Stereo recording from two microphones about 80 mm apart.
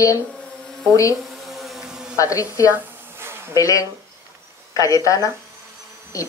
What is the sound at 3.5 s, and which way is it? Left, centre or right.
Speech, left.